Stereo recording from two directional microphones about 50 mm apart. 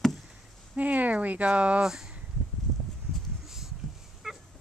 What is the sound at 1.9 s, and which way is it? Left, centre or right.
Speech, centre.